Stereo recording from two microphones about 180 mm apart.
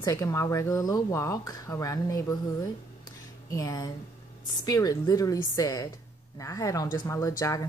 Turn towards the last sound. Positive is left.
turn(degrees=20)  # may be behind; listen again after turning